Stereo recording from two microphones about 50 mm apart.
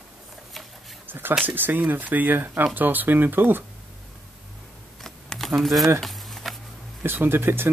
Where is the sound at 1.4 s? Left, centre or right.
Right.